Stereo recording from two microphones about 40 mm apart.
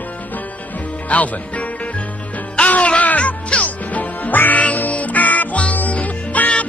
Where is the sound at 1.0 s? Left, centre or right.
Left.